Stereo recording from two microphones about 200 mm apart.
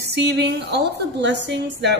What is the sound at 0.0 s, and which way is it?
A woman's voice, 55° right (ahead or behind).